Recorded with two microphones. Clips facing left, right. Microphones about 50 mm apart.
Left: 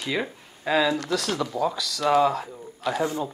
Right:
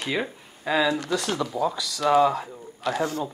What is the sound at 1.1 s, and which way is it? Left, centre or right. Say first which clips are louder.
Speech: even; centre.